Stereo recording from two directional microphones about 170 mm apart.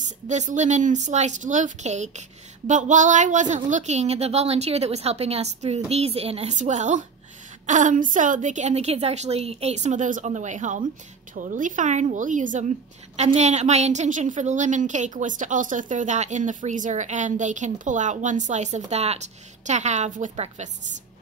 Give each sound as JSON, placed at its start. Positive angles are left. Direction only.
{"t": 0.3, "sound": "a woman's voice", "side_deg": -45}